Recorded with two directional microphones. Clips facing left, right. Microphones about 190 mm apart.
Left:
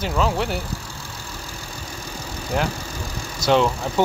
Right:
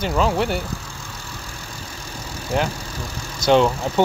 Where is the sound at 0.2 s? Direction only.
Centre (ahead or behind).